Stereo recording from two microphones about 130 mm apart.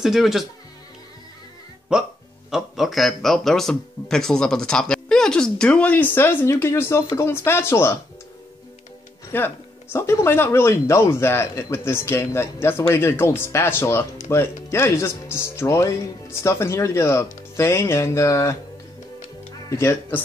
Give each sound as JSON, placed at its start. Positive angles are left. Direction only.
{"t": 0.0, "sound": "speech", "side_deg": -5}
{"t": 2.5, "sound": "speech", "side_deg": 0}
{"t": 9.3, "sound": "speech", "side_deg": 15}
{"t": 19.7, "sound": "speech", "side_deg": 20}